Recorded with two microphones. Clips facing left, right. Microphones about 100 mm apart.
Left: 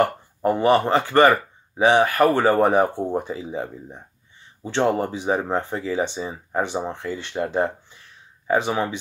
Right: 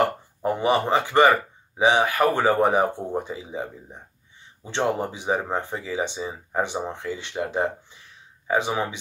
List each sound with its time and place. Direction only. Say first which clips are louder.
0.0 s a sound: left 2 dB; 50° left (ahead or behind)
0.7 s speech: left 3 dB; 15° right (ahead or behind)
4.6 s speech: left 4 dB; 15° right (ahead or behind)